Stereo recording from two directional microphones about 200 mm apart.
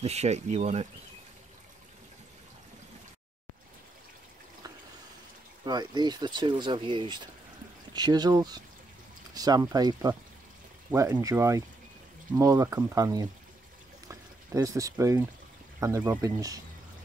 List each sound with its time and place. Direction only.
0.0 s speech: 30° right (ahead or behind)
5.7 s speech: 20° right (ahead or behind)
14.0 s a sound: 15° right (ahead or behind)
15.8 s speech: 15° right (ahead or behind)